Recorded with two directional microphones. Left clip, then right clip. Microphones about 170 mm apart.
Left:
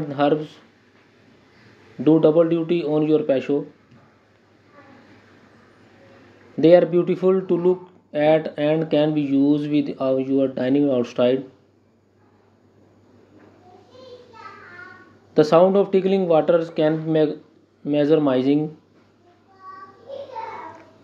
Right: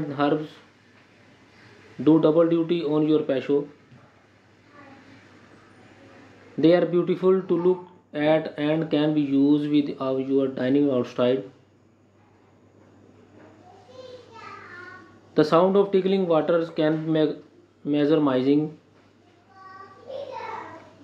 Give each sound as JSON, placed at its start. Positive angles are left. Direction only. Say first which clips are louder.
{"t": 0.1, "sound": "speech", "louder": "left 5 dB", "side_deg": 35}
{"t": 2.0, "sound": "speech", "louder": "left 3 dB", "side_deg": 35}
{"t": 6.6, "sound": "speech", "louder": "left 5 dB", "side_deg": 35}
{"t": 15.3, "sound": "speech", "louder": "left 4 dB", "side_deg": 35}